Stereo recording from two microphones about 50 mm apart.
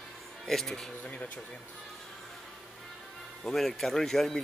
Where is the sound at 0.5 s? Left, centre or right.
Centre.